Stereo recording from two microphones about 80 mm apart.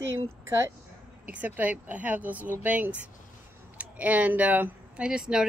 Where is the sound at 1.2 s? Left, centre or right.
Right.